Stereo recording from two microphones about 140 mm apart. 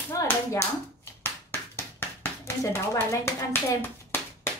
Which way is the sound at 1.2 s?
15° left (ahead or behind).